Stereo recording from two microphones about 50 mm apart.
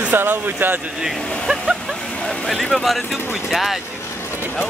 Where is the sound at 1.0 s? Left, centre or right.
Centre.